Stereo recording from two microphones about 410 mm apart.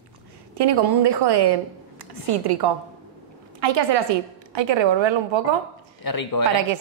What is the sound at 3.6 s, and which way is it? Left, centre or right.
A woman's voice, right.